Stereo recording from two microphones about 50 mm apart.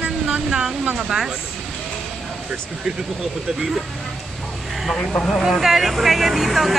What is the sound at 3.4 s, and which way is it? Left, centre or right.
Speech, centre.